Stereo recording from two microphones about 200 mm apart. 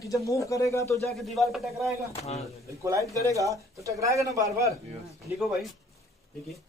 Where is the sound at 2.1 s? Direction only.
30° left (ahead or behind).